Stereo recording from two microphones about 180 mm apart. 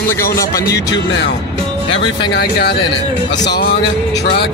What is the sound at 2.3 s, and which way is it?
Speech, 60° left (ahead or behind).